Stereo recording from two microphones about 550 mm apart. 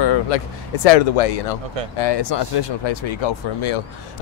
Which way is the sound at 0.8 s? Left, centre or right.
Left.